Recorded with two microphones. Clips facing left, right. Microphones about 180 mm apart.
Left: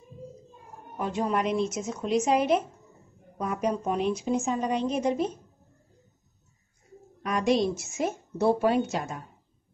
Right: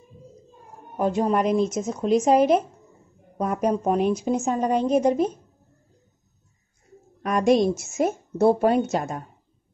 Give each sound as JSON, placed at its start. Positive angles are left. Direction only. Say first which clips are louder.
{"t": 0.9, "sound": "a woman's voice", "louder": "right 6 dB", "side_deg": -40}
{"t": 7.2, "sound": "a woman's voice", "louder": "right 5 dB", "side_deg": -50}